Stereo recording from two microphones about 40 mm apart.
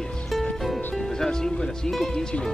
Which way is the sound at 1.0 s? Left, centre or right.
Centre.